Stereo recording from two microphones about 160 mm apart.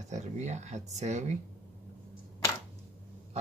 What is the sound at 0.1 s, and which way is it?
Speech, 45° right (ahead or behind).